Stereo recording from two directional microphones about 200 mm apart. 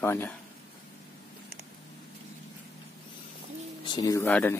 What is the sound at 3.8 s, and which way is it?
Speech, 20° left (ahead or behind).